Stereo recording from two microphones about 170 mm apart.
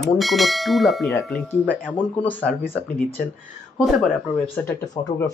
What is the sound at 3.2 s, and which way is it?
Speech, 60° left (ahead or behind).